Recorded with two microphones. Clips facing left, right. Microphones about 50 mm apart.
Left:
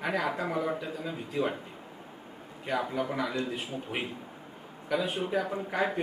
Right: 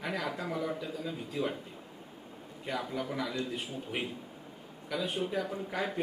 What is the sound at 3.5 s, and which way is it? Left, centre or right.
A man's voice, centre.